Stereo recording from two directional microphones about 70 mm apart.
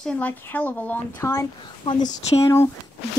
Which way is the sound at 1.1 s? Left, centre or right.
Left.